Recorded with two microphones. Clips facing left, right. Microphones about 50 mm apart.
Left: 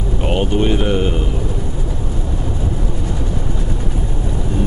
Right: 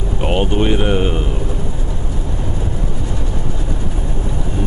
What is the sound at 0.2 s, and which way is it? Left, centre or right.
Speech, centre.